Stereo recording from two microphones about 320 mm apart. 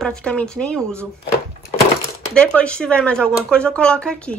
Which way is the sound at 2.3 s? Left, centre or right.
Centre.